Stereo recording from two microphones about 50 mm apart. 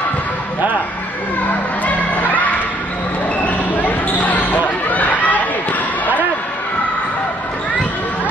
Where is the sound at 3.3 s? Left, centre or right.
Left.